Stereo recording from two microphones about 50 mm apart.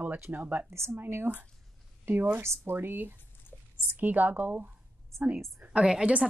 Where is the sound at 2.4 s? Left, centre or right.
Right.